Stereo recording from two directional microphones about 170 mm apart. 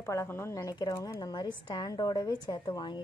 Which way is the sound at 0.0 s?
15° left (ahead or behind).